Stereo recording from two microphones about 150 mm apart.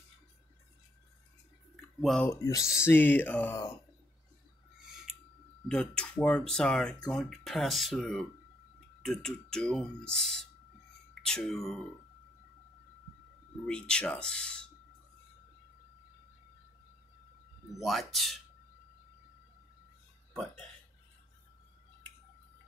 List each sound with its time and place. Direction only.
2.0 s speech: 5° left (ahead or behind)
2.2 s speech: 20° left (ahead or behind)
2.6 s speech: 5° right (ahead or behind)
2.9 s speech: 15° left (ahead or behind)
4.8 s scissors: 5° right (ahead or behind)
5.7 s speech: 5° left (ahead or behind)
13.7 s speech: 5° left (ahead or behind)
17.7 s speech: centre (ahead or behind)